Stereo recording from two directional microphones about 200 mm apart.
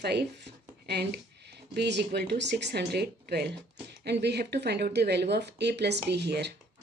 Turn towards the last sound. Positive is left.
turn(degrees=-55)  # may be behind; listen again after turning